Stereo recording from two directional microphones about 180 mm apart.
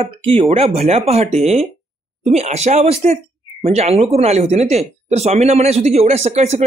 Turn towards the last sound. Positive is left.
turn(degrees=-35)  # may be behind; listen again after turning